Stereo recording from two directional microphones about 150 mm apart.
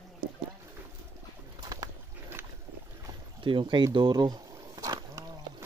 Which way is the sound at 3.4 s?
30° right (ahead or behind).